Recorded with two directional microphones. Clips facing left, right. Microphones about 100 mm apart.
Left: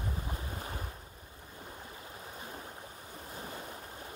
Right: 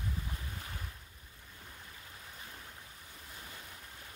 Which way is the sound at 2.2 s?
30° left (ahead or behind).